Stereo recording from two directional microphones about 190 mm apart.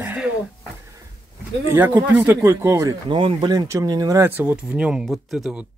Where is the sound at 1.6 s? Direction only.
10° right (ahead or behind).